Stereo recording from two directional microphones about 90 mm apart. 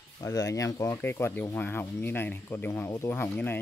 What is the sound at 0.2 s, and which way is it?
Speech, 40° left (ahead or behind).